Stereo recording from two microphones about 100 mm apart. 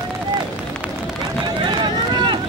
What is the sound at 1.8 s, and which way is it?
Run, 50° right (ahead or behind).